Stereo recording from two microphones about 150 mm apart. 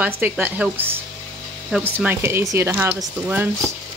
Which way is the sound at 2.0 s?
15° right (ahead or behind).